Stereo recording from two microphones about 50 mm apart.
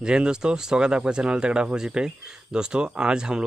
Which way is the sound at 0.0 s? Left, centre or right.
Centre.